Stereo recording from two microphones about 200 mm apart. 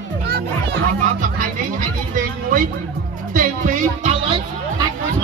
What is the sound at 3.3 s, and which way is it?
Music, 40° right (ahead or behind).